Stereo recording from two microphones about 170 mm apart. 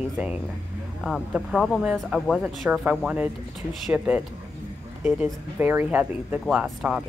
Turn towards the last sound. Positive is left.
turn(degrees=-5)  # may be behind; listen again after turning